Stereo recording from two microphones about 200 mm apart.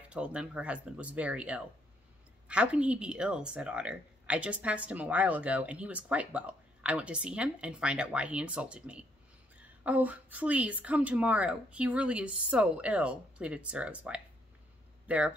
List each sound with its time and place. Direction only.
0.1 s a woman's voice: 5° right (ahead or behind)